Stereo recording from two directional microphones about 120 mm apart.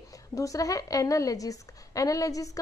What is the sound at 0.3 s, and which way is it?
A woman's voice, 30° left (ahead or behind).